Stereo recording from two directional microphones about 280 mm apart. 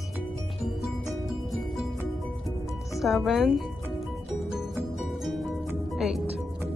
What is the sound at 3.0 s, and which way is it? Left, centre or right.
Speech, centre.